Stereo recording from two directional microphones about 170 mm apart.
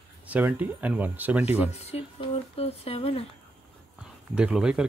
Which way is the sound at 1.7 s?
40° left (ahead or behind).